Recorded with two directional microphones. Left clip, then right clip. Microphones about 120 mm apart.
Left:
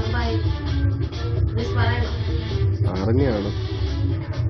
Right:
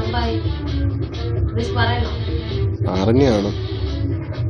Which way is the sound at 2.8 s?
30° right (ahead or behind).